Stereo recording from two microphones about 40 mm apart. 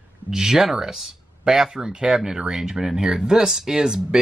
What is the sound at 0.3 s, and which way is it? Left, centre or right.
Speech, centre.